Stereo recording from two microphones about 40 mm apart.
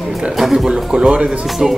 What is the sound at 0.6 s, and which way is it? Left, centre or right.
Speech, centre.